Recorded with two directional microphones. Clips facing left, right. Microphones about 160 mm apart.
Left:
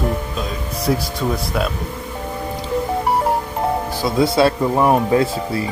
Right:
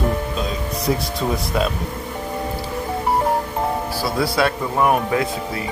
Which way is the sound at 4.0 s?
25° left (ahead or behind).